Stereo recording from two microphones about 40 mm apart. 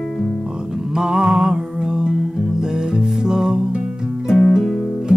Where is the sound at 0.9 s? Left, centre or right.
Centre.